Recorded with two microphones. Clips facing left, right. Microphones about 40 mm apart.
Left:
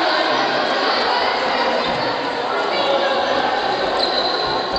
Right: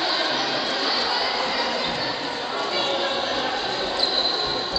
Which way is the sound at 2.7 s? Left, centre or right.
Centre.